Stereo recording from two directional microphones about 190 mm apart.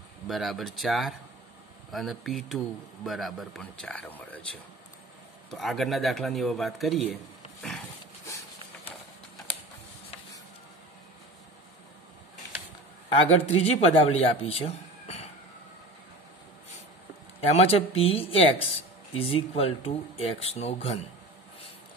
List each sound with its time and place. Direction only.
0.3 s speech: centre (ahead or behind)
13.1 s a man's voice: 35° left (ahead or behind)
17.4 s speech: 30° left (ahead or behind)